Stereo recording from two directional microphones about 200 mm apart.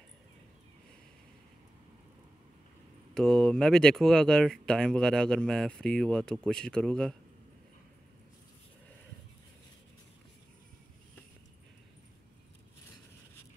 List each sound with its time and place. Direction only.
3.2 s speech: 5° left (ahead or behind)